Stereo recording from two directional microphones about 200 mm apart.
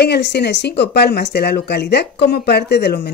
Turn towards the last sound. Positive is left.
turn(degrees=55)  # may be behind; listen again after turning